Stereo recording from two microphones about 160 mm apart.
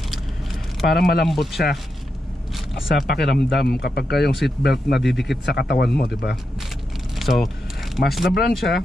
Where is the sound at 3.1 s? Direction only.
90° left.